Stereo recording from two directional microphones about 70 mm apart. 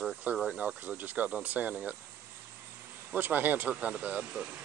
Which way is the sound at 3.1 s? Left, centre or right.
Right.